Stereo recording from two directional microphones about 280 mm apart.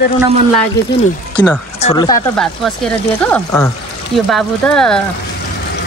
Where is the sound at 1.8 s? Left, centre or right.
Centre.